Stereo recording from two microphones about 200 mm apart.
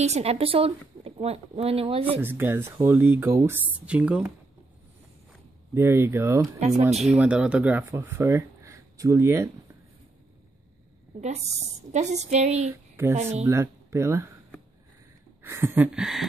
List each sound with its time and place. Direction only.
0.0 s speech: 30° right (ahead or behind)
2.1 s speech: 10° right (ahead or behind)
5.8 s speech: 15° right (ahead or behind)
6.9 s speech: 35° right (ahead or behind)
7.2 s speech: 5° right (ahead or behind)
11.1 s speech: 35° right (ahead or behind)
13.4 s speech: 10° right (ahead or behind)
15.4 s speech: 10° right (ahead or behind)